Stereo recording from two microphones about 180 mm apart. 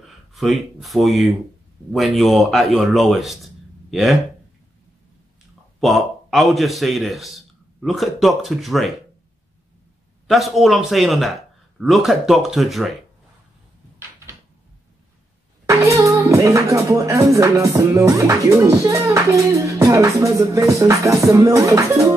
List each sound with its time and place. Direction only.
0.0 s a man's voice: centre (ahead or behind)
5.8 s a man's voice: centre (ahead or behind)
10.2 s a man's voice: centre (ahead or behind)
15.6 s music: 15° right (ahead or behind)